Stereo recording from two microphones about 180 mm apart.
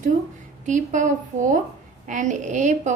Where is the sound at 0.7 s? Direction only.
45° right (ahead or behind).